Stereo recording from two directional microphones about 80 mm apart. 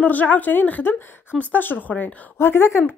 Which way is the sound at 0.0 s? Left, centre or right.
Left.